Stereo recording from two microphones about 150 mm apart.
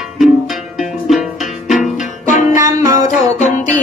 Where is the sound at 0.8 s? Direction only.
Centre (ahead or behind).